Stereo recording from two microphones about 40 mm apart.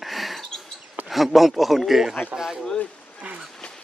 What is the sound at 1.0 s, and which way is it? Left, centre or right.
A man's voice, centre.